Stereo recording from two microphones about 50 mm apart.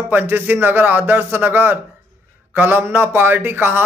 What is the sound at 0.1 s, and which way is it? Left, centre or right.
A man's voice, right.